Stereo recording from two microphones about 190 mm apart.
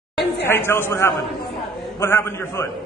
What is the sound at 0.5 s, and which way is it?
A man's voice, 10° left (ahead or behind).